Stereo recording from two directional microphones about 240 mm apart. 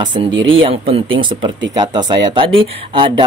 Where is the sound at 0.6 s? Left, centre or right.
Right.